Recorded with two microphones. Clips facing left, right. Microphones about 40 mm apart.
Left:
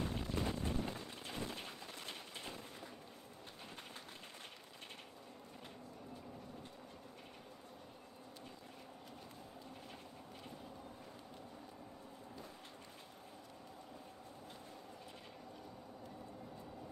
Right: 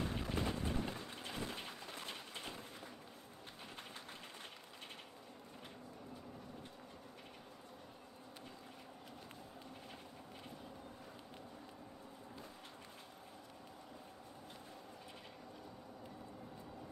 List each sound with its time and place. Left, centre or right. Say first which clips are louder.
0.1 s boat: right 1 dB; centre
0.4 s vehicle: even; centre